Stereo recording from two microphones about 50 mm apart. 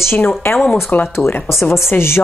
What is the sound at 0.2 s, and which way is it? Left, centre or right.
Speech, left.